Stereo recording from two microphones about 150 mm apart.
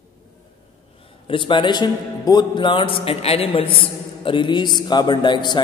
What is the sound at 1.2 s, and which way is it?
A man's voice, 35° left (ahead or behind).